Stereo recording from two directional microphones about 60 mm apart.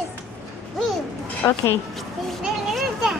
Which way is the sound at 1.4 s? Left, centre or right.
Left.